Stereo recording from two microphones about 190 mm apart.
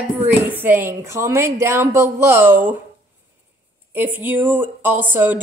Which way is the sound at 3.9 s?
10° right (ahead or behind).